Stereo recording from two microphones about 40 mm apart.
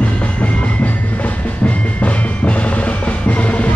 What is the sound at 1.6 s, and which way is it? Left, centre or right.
Music, left.